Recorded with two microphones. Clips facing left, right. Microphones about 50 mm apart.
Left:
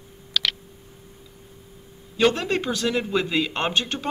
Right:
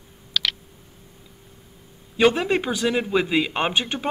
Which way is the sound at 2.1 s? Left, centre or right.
Centre.